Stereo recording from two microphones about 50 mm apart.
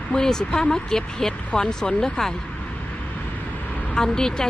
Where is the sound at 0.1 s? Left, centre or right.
Centre.